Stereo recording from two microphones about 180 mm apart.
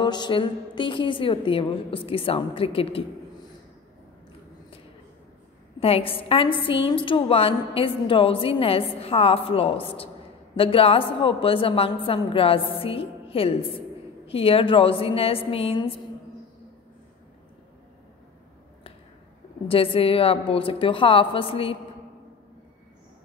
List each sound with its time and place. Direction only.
0.0 s a woman's voice: 25° left (ahead or behind)
5.8 s a woman's voice: 30° left (ahead or behind)
19.7 s a woman's voice: 30° left (ahead or behind)